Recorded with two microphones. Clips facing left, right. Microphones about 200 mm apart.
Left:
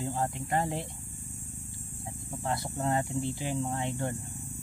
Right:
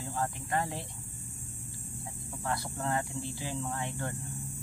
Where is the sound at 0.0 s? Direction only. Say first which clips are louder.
Left 3 dB; 20° left (ahead or behind).